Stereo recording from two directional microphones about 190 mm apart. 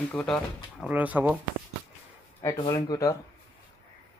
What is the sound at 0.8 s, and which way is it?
Speech, 10° right (ahead or behind).